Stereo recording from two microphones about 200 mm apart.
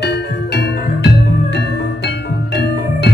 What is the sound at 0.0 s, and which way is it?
Music, 55° left (ahead or behind).